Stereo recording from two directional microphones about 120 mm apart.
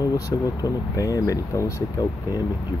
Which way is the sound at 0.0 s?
30° left (ahead or behind).